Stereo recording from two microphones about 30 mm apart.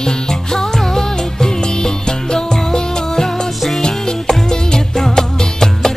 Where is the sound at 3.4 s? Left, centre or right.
Centre.